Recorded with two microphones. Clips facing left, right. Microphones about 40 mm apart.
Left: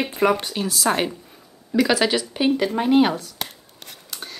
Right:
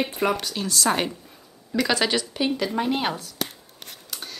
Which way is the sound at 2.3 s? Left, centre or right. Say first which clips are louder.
Left 5 dB; centre.